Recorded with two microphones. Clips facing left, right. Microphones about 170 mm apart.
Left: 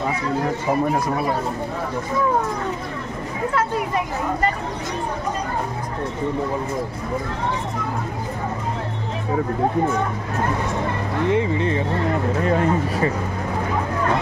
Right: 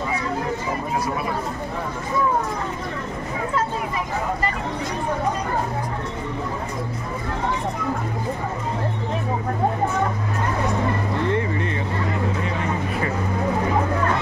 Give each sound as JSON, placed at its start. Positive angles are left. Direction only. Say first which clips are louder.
{"t": 11.2, "sound": "speech", "louder": "left 5 dB", "side_deg": 15}
{"t": 12.4, "sound": "speech", "louder": "left 6 dB", "side_deg": 45}